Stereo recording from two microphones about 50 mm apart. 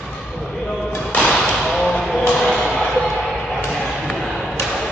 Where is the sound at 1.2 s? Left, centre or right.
Centre.